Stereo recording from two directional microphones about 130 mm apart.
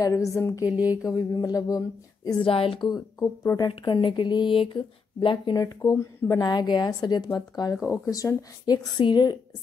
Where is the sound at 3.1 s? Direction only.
20° left (ahead or behind).